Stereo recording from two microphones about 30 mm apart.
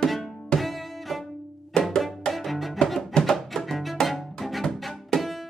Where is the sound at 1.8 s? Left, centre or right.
Left.